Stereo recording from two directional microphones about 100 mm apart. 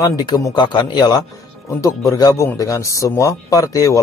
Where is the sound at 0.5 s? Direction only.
45° left (ahead or behind).